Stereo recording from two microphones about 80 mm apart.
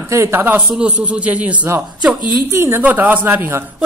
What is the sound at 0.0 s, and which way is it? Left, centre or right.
Speech, right.